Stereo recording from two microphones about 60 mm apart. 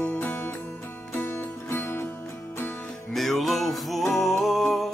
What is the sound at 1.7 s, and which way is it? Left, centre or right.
Music, left.